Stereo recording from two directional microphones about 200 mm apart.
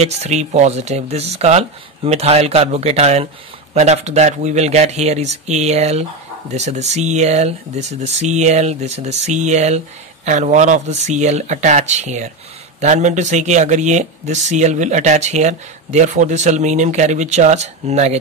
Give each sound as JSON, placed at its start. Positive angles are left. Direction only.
{"t": 0.0, "sound": "speech", "side_deg": -35}